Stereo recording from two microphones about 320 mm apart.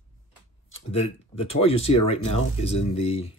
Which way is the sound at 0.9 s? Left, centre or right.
Centre.